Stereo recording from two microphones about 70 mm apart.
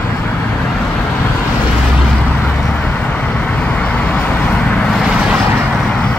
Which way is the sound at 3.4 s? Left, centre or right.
Left.